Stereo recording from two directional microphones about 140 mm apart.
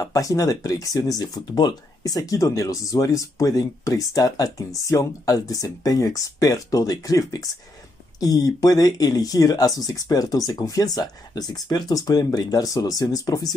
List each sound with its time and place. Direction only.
0.0 s speech: 25° left (ahead or behind)